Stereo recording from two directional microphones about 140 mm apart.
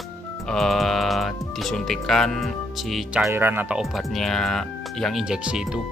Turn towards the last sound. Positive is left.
turn(degrees=-5)  # may be behind; listen again after turning